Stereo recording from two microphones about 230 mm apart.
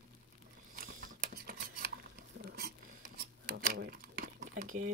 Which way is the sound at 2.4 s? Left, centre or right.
Right.